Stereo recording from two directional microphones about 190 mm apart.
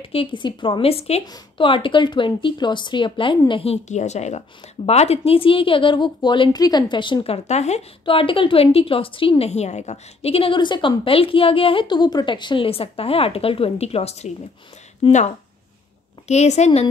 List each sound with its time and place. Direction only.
0.0 s a woman's voice: 30° left (ahead or behind)
16.3 s a woman's voice: 35° left (ahead or behind)